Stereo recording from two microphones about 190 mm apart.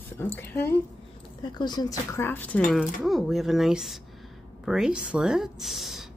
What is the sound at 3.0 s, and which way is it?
Speech, centre (ahead or behind).